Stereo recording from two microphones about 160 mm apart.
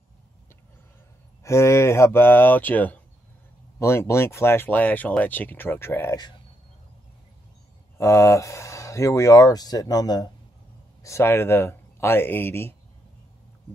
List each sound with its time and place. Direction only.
1.4 s speech: 15° left (ahead or behind)
8.0 s speech: 20° left (ahead or behind)